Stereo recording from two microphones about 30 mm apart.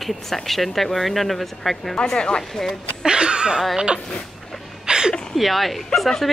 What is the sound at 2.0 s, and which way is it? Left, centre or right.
Speech, left.